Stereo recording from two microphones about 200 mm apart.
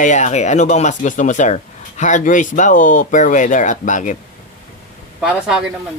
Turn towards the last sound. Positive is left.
turn(degrees=-5)  # may be behind; listen again after turning